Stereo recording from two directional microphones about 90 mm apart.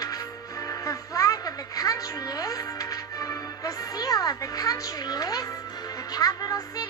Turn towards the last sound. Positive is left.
turn(degrees=45)  # may be behind; listen again after turning